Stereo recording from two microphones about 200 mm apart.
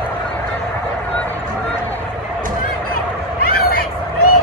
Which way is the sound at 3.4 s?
50° left (ahead or behind).